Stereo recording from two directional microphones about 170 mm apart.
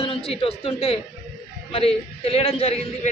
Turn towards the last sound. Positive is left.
turn(degrees=35)  # may be behind; listen again after turning